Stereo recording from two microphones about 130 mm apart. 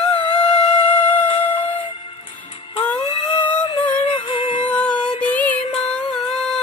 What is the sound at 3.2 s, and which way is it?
Music, 35° left (ahead or behind).